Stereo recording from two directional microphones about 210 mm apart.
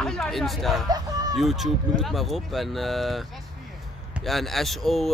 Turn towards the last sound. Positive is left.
turn(degrees=0)  # may be behind; listen again after turning